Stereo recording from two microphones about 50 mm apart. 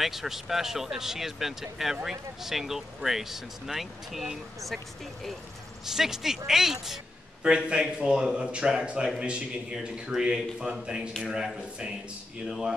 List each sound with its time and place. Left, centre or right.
0.0 s speech: centre
5.9 s speech: centre